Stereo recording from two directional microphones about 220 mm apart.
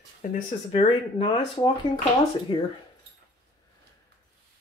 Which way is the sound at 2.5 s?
25° left (ahead or behind).